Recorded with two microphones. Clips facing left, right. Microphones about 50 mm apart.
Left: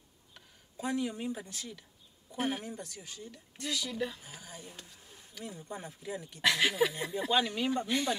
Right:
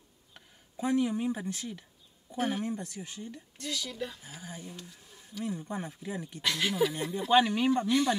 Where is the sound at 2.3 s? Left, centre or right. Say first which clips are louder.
Right 2 dB; centre.